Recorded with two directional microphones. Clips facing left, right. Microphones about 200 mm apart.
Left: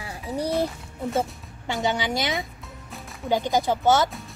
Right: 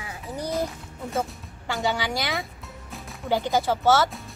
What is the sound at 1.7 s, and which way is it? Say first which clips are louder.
A woman's voice: left 1 dB; 20° left (ahead or behind).